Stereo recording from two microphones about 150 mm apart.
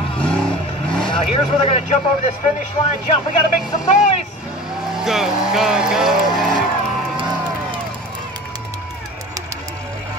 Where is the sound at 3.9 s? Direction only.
50° left (ahead or behind).